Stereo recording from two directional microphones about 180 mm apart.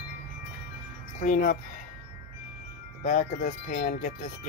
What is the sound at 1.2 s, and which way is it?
Speech, 50° left (ahead or behind).